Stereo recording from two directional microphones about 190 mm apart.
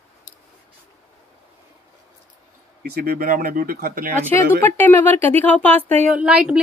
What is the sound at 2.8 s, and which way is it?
Speech, 55° right (ahead or behind).